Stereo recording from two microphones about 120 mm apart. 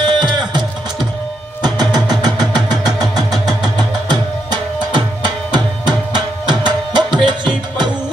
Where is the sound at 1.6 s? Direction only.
35° right (ahead or behind).